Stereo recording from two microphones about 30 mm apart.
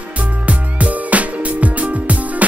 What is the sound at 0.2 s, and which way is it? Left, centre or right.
Music, right.